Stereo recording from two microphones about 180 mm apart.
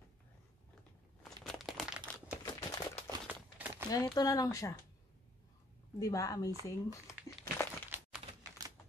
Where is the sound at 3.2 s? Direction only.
10° right (ahead or behind).